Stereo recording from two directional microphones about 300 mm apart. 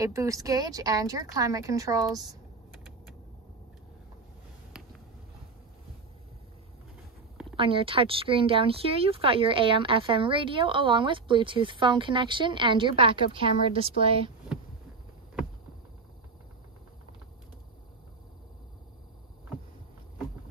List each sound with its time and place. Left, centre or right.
0.0 s speech: centre
7.5 s speech: centre